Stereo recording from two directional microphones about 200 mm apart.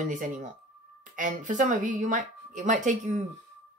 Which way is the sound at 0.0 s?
40° right (ahead or behind).